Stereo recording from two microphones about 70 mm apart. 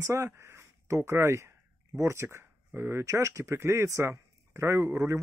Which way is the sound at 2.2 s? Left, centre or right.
Right.